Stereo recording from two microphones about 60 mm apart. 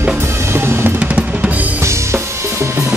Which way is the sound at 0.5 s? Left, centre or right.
Right.